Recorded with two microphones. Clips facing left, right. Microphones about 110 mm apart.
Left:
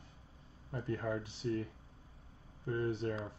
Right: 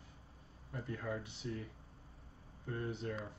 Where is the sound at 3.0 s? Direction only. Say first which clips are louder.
Left 4 dB; 35° left (ahead or behind).